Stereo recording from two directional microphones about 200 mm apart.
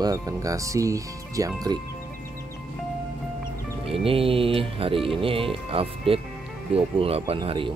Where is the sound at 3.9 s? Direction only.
30° right (ahead or behind).